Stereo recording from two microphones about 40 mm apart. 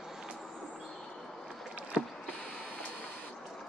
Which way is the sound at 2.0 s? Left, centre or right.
Centre.